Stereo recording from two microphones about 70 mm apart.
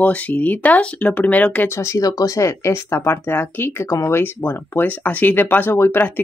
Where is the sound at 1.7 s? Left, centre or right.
Left.